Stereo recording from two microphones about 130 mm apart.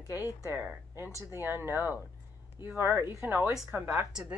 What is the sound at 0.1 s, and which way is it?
Speech, 15° right (ahead or behind).